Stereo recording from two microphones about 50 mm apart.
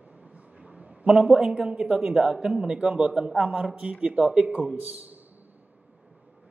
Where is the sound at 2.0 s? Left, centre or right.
Centre.